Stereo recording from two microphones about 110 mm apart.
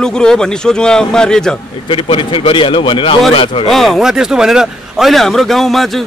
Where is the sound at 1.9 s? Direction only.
50° left (ahead or behind).